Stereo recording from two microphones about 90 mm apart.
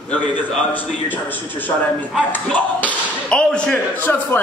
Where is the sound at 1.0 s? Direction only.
20° left (ahead or behind).